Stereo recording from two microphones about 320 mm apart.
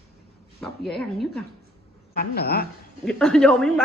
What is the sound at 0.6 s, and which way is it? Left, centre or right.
Speech, centre.